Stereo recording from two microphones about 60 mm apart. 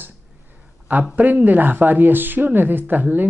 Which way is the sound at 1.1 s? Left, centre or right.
Right.